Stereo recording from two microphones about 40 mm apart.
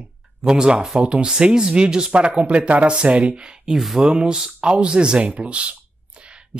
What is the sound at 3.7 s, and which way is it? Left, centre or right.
Speech, centre.